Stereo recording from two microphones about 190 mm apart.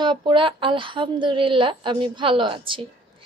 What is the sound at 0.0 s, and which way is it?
A woman's voice, 25° right (ahead or behind).